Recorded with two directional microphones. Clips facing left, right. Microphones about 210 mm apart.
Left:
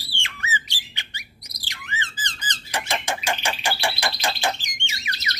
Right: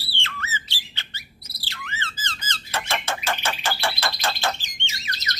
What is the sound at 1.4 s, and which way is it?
Squawk, 15° left (ahead or behind).